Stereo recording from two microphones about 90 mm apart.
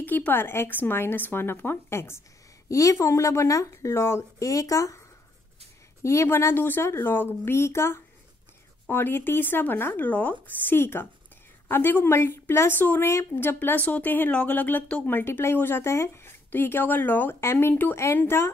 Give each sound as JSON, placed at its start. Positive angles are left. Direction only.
{"t": 0.0, "sound": "a woman's voice", "side_deg": 20}
{"t": 6.0, "sound": "a woman's voice", "side_deg": 30}